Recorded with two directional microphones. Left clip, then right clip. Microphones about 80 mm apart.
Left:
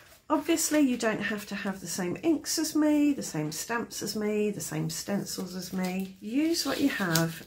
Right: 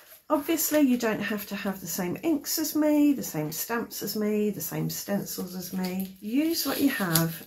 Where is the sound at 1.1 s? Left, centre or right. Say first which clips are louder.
Right 1 dB; centre; by 5.6 s left.